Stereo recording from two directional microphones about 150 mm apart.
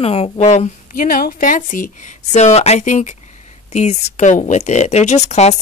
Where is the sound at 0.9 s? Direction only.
75° left (ahead or behind).